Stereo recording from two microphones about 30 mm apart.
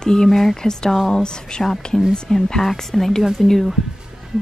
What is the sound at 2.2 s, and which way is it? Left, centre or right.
Speech, centre.